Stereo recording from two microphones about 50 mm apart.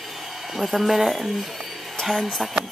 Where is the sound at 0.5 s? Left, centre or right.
Centre.